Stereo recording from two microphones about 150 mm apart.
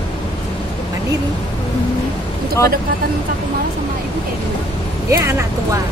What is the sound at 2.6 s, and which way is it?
Speech, 20° left (ahead or behind).